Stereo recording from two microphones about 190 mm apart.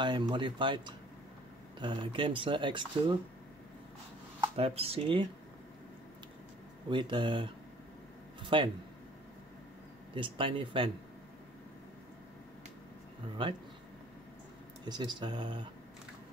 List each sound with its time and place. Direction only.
0.0 s speech: 25° right (ahead or behind)
4.6 s speech: 30° right (ahead or behind)
6.9 s speech: 25° right (ahead or behind)
10.1 s speech: 25° right (ahead or behind)
14.9 s speech: 20° right (ahead or behind)